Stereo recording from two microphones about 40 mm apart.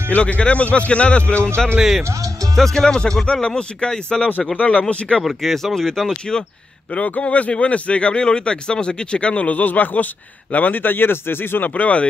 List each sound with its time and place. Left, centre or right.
0.1 s a man's voice: left
1.8 s speech: centre
2.5 s a man's voice: centre; by 5.2 s left
5.2 s speech: centre
7.2 s speech: left
11.6 s a man's voice: left